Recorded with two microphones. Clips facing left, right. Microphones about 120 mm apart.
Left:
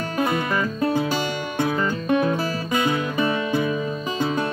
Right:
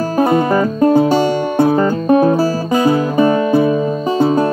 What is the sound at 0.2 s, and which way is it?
Music, 35° right (ahead or behind).